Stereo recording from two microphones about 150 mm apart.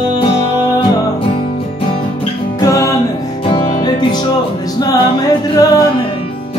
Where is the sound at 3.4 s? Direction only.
35° left (ahead or behind).